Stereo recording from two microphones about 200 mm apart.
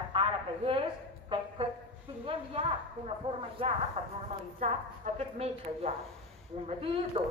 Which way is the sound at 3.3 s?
30° right (ahead or behind).